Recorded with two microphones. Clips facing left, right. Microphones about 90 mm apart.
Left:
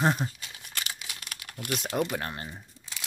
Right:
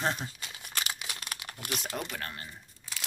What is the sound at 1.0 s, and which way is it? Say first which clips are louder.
Crumpling: right 2 dB; 35° right (ahead or behind).